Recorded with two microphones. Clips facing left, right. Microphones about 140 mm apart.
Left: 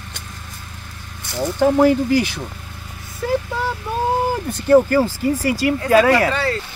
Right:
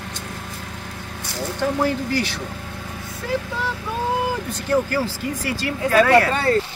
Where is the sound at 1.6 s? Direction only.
55° left (ahead or behind).